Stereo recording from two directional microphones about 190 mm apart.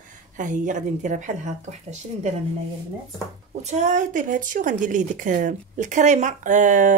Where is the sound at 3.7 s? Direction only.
40° right (ahead or behind).